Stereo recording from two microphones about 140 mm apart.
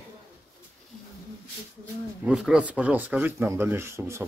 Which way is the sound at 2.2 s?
5° right (ahead or behind).